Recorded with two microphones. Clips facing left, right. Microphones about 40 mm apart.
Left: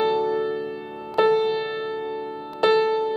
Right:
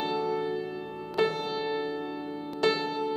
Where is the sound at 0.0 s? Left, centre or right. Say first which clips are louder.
Left 7 dB; centre.